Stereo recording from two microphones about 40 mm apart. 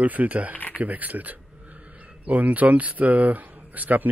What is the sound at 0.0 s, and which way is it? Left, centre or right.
Speech, right.